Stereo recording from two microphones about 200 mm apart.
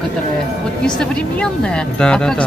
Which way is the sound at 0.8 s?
5° left (ahead or behind).